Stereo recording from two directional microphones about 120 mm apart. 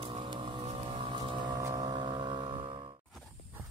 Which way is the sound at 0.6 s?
55° right (ahead or behind).